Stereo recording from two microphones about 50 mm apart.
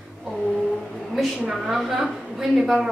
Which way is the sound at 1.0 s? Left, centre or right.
Centre.